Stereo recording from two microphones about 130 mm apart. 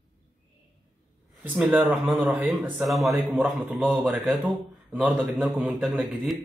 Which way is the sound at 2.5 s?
5° right (ahead or behind).